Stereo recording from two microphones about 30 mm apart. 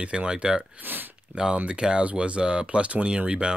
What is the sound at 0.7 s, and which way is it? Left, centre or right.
Speech, right.